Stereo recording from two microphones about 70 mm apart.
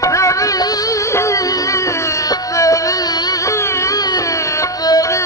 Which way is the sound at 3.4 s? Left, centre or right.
Left.